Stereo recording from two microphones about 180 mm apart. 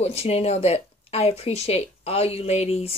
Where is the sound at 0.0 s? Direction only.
35° left (ahead or behind).